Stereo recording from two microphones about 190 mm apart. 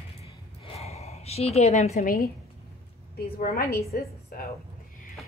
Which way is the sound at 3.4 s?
50° left (ahead or behind).